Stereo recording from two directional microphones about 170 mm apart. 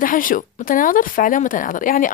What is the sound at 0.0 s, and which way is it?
Speech, 55° left (ahead or behind).